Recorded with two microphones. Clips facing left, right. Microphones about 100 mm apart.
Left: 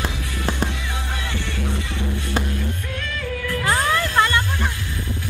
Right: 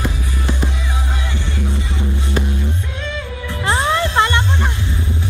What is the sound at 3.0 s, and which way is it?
Music, 25° right (ahead or behind).